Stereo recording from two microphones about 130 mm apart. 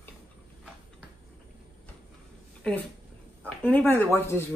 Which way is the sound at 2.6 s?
5° left (ahead or behind).